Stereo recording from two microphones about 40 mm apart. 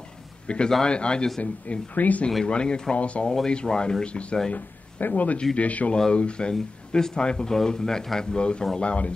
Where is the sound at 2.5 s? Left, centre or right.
Left.